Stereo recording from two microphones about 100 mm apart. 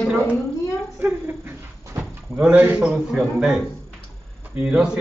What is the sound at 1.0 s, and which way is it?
Speech, 20° right (ahead or behind).